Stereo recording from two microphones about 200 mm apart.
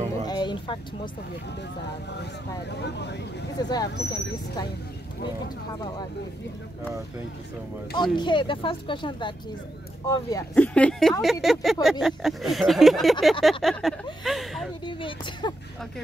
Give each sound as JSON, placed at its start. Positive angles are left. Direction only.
{"t": 0.3, "sound": "a sound", "side_deg": 20}
{"t": 2.8, "sound": "speech", "side_deg": 60}
{"t": 3.5, "sound": "speech", "side_deg": 20}
{"t": 7.9, "sound": "speech", "side_deg": 20}
{"t": 10.5, "sound": "speech", "side_deg": 5}
{"t": 14.9, "sound": "speech", "side_deg": 25}